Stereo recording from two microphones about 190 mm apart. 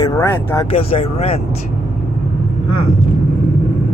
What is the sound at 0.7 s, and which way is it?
Speech, 30° left (ahead or behind).